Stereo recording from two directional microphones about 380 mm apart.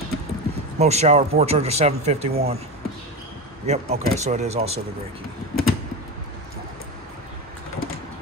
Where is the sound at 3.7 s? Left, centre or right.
Centre.